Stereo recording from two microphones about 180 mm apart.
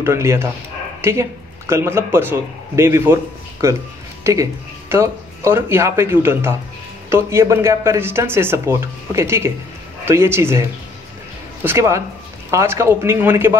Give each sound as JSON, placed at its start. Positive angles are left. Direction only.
{"t": 0.0, "sound": "speech", "side_deg": -15}
{"t": 1.7, "sound": "speech", "side_deg": -15}